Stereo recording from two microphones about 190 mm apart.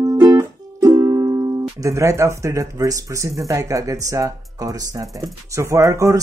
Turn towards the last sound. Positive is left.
turn(degrees=-15)  # may be behind; listen again after turning